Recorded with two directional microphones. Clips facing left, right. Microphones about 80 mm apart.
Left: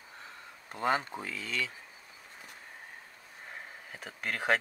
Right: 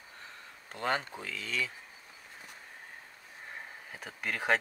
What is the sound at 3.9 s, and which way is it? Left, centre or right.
Speech, centre.